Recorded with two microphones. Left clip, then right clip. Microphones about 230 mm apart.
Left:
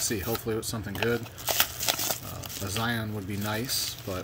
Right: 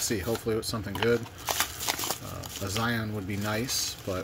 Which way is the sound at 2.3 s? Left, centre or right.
Centre.